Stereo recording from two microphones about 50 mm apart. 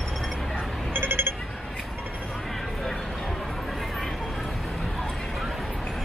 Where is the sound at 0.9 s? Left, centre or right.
Right.